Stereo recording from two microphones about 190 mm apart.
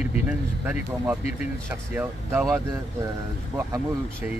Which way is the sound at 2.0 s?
10° right (ahead or behind).